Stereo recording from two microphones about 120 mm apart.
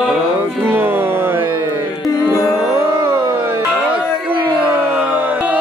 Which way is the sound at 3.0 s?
25° right (ahead or behind).